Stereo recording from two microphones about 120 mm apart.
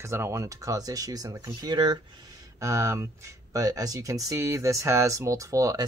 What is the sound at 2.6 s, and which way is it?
Speech, 25° right (ahead or behind).